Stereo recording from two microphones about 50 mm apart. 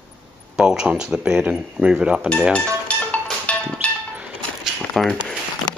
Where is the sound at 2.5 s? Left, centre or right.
Left.